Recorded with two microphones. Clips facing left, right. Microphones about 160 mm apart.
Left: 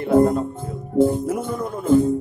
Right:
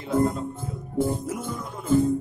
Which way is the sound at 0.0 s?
60° left (ahead or behind).